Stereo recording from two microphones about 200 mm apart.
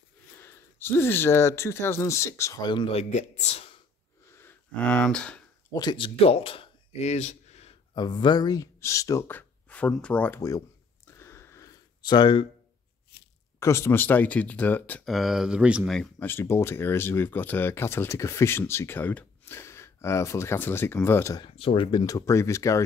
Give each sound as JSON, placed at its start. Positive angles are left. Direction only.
{"t": 0.4, "sound": "speech", "side_deg": 10}
{"t": 4.3, "sound": "a sound", "side_deg": 10}
{"t": 5.7, "sound": "speech", "side_deg": 20}
{"t": 11.1, "sound": "a sound", "side_deg": 15}
{"t": 13.6, "sound": "speech", "side_deg": 15}
{"t": 21.5, "sound": "speech", "side_deg": 30}